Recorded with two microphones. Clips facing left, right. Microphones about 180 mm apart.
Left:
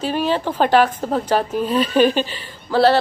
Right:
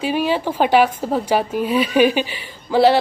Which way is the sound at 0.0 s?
10° right (ahead or behind).